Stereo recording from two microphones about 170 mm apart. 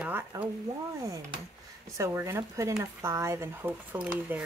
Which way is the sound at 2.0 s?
15° right (ahead or behind).